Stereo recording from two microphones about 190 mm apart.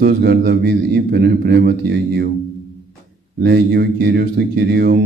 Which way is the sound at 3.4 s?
60° right (ahead or behind).